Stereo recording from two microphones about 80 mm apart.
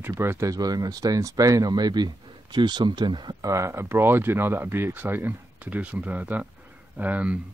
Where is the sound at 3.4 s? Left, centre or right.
Right.